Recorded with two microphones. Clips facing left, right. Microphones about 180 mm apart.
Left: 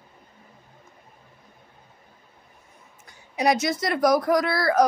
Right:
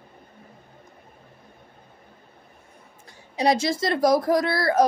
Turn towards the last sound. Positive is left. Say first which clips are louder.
# even
turn(degrees=-25)  # may be behind; listen again after turning